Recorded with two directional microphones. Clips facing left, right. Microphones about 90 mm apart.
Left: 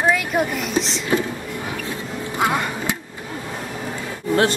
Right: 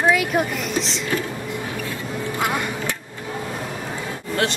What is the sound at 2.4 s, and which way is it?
Music, 20° left (ahead or behind).